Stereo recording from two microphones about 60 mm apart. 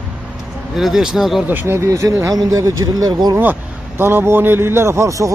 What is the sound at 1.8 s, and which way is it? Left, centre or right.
A man's voice, right.